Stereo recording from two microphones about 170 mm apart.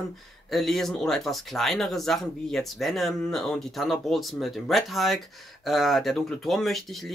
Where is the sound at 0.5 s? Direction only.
Centre (ahead or behind).